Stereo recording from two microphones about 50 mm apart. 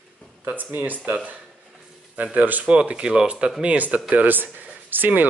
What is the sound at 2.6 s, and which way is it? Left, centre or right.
Speech, right.